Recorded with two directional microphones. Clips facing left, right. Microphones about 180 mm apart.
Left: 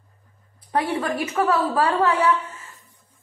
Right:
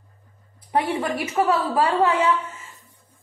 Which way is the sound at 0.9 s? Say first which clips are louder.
Even; 15° right (ahead or behind).